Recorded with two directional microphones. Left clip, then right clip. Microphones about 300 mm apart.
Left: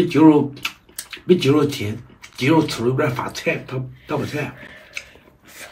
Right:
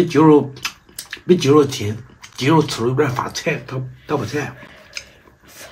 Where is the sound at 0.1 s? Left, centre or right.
Centre.